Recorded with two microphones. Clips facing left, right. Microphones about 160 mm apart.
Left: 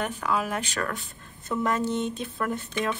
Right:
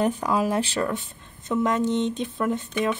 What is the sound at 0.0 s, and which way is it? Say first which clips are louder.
Speech: right 5 dB; 35° right (ahead or behind).